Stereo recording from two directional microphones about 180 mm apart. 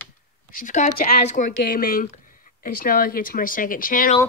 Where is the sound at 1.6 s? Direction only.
55° left (ahead or behind).